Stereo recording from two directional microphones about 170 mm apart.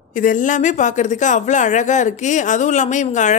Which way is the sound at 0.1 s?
50° left (ahead or behind).